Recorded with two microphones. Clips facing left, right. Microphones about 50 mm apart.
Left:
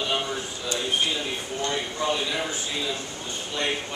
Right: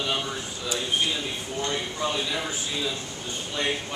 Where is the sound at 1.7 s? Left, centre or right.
Centre.